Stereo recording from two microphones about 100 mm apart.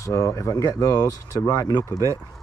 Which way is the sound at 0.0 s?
30° left (ahead or behind).